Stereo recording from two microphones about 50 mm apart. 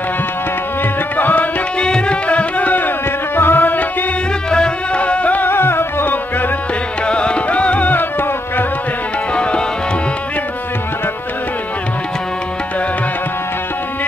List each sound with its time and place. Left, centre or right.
1.1 s tabla: left
1.8 s music: centre; by 3.8 s left
4.5 s music: centre
5.5 s music: left
7.1 s music: left
9.3 s tabla: left